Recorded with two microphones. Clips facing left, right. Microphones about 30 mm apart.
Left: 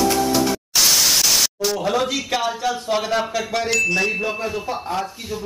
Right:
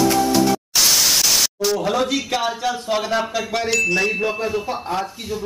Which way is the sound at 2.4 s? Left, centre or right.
Centre.